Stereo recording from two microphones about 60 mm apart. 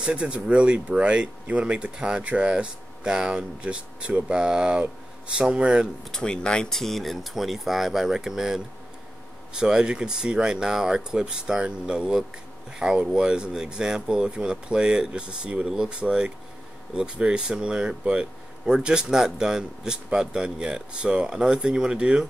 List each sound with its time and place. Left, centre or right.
0.0 s speech: centre
6.1 s speech: centre